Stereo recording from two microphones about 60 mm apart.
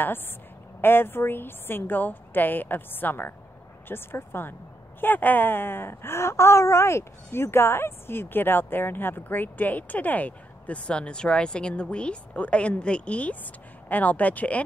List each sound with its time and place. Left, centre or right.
0.7 s a woman's voice: left